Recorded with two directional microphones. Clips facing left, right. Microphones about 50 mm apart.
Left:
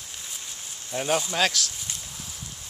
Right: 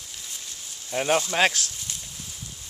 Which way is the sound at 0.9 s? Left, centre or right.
Right.